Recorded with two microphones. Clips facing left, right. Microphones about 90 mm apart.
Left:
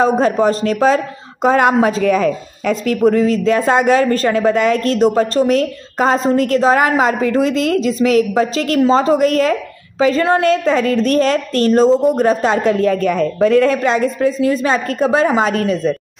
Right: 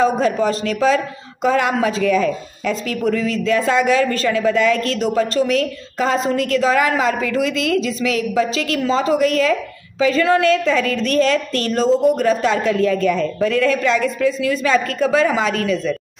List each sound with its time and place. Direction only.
0.0 s speech: 40° left (ahead or behind)